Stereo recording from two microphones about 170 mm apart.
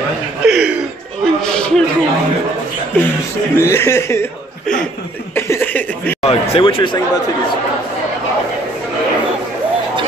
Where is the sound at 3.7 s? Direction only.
15° left (ahead or behind).